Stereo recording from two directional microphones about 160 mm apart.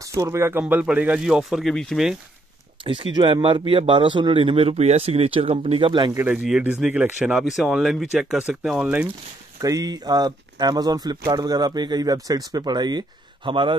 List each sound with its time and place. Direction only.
0.0 s speech: 20° right (ahead or behind); by 2.1 s centre (ahead or behind)
2.8 s speech: 30° right (ahead or behind)
6.1 s speech: 10° right (ahead or behind)
9.6 s speech: 20° right (ahead or behind)